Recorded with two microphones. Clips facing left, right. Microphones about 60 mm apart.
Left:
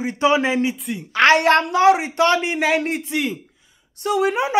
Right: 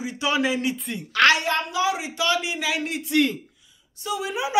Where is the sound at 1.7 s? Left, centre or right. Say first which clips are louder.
Left 9 dB; left.